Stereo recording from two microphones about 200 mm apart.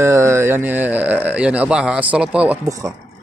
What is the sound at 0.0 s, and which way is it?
Speech, 15° right (ahead or behind).